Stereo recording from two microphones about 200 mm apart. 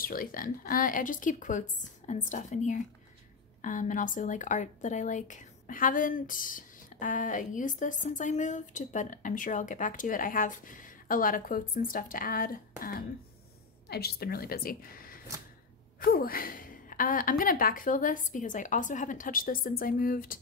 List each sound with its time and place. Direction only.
0.0 s a woman's voice: 45° left (ahead or behind)